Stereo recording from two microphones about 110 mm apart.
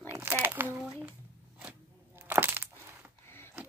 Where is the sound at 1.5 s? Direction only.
15° right (ahead or behind).